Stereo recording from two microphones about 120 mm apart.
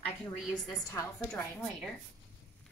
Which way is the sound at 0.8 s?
25° left (ahead or behind).